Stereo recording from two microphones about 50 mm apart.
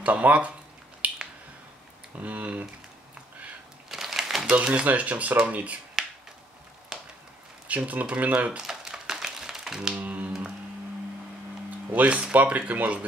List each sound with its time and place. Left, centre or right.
0.0 s speech: right
1.0 s finger snapping: right
2.1 s speech: right
3.9 s a sound: centre
4.5 s speech: right
6.0 s finger snapping: centre
6.9 s a sound: centre
7.6 s speech: right
8.5 s a sound: centre
9.9 s speech: right
11.9 s speech: right